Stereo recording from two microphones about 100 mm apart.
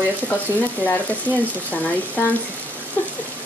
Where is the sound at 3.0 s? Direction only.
20° left (ahead or behind).